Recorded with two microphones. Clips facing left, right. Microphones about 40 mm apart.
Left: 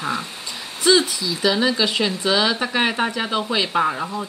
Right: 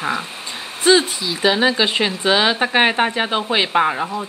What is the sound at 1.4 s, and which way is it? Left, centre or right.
Speech, right.